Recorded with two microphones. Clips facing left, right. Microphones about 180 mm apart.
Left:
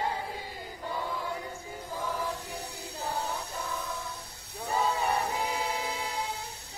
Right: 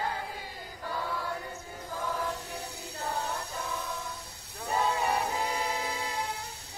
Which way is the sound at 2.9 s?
5° left (ahead or behind).